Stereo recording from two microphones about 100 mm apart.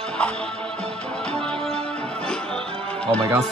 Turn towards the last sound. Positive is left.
turn(degrees=10)  # may be behind; listen again after turning